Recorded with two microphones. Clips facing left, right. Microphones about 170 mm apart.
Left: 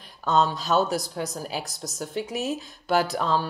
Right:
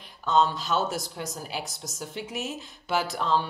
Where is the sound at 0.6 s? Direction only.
40° left (ahead or behind).